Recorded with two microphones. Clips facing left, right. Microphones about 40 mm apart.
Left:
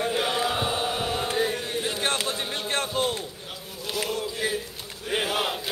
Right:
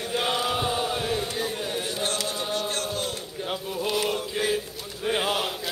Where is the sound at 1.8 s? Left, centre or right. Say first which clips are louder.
Left 4 dB; left.